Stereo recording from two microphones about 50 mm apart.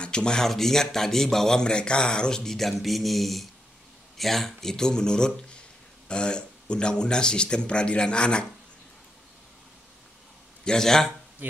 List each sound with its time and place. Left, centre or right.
0.0 s speech: centre
10.6 s speech: centre